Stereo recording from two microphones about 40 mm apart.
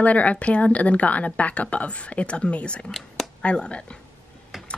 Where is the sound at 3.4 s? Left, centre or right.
Left.